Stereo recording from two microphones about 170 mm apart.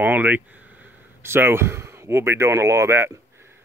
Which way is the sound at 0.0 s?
10° right (ahead or behind).